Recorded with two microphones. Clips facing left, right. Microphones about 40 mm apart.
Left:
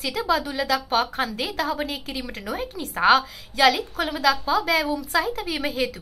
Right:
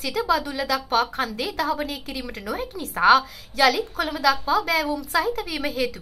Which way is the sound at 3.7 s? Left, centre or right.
Centre.